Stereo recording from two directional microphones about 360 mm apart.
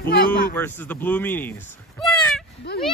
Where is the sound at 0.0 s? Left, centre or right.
Left.